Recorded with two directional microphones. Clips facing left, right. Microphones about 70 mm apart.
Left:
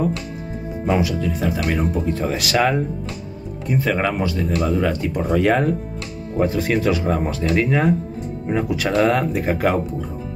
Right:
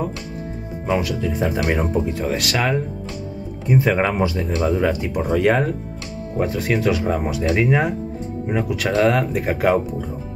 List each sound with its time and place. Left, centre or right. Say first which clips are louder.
0.8 s speech: left 1 dB; centre
1.3 s speech: right 1 dB; right
2.0 s speech: even; centre
3.6 s speech: right 2 dB; centre